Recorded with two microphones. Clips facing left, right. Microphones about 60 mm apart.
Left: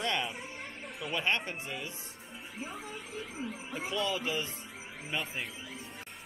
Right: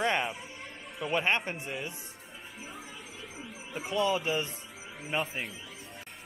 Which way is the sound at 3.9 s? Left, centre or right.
Centre.